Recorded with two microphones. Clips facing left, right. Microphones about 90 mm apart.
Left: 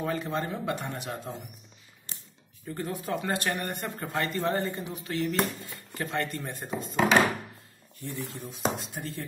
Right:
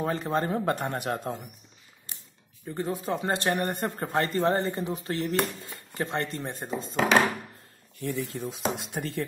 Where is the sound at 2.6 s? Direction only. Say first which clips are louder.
Right 3 dB; 20° right (ahead or behind).